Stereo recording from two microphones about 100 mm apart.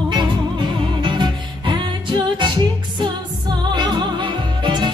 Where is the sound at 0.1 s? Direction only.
50° right (ahead or behind).